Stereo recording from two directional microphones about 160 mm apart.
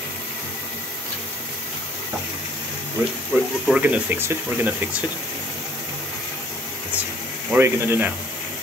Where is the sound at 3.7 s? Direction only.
10° right (ahead or behind).